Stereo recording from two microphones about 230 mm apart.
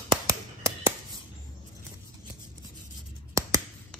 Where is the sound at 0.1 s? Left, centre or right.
Centre.